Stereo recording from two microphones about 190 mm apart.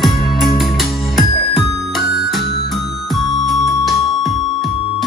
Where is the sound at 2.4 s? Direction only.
60° left (ahead or behind).